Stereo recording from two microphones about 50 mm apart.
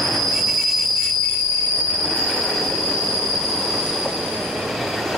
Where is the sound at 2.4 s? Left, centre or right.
Centre.